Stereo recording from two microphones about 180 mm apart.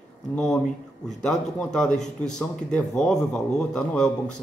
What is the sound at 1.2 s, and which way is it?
A man's voice, 5° left (ahead or behind).